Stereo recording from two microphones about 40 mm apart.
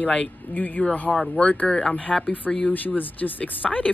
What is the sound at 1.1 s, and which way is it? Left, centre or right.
Speech, centre.